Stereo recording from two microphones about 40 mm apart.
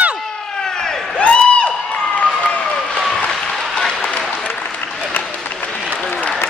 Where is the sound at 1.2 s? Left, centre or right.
Left.